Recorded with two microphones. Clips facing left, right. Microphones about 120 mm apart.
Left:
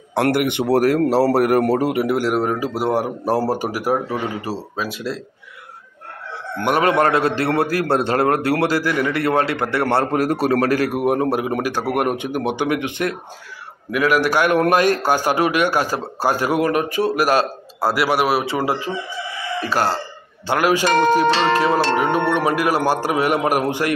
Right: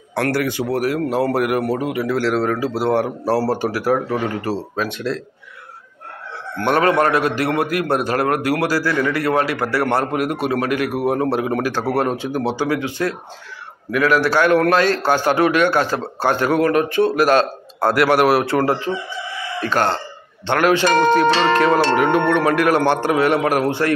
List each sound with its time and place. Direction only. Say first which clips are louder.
0.1 s a man's voice: left 2 dB; 20° left (ahead or behind)
0.7 s speech: left 4 dB; 40° left (ahead or behind)
2.0 s a man's voice: even; 15° left (ahead or behind)
6.5 s a man's voice: right 1 dB; 15° left (ahead or behind); by 11.0 s 35° left (ahead or behind)
11.0 s a man's voice: even; 20° left (ahead or behind); by 18.6 s centre (ahead or behind)
19.7 s a man's voice: right 2 dB; 5° left (ahead or behind)